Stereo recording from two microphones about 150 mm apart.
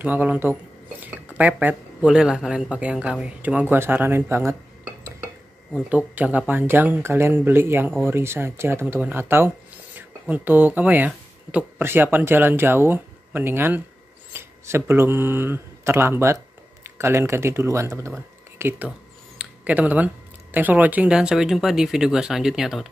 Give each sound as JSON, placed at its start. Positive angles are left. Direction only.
{"t": 0.0, "sound": "speech", "side_deg": -10}
{"t": 5.9, "sound": "speech", "side_deg": -10}
{"t": 18.9, "sound": "a sound", "side_deg": -10}
{"t": 20.5, "sound": "speech", "side_deg": -10}